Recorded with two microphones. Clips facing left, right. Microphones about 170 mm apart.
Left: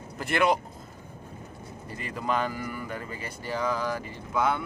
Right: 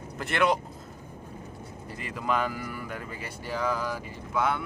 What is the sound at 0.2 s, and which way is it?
Speech, centre (ahead or behind).